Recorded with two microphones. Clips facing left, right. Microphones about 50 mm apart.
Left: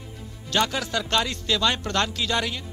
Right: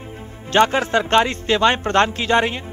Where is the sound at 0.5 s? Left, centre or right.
Right.